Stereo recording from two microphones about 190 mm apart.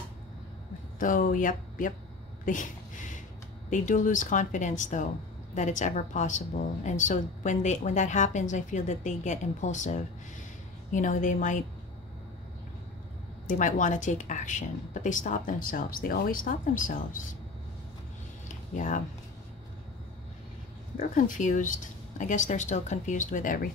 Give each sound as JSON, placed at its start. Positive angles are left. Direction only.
{"t": 0.9, "sound": "a woman's voice", "side_deg": 45}
{"t": 13.5, "sound": "a woman's voice", "side_deg": 45}
{"t": 18.5, "sound": "a sound", "side_deg": 40}
{"t": 21.1, "sound": "a woman's voice", "side_deg": 45}